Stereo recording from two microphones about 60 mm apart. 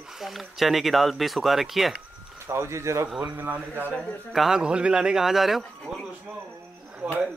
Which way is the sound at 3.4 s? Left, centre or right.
Right.